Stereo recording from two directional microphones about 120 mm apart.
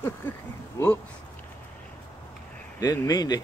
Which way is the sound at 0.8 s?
20° left (ahead or behind).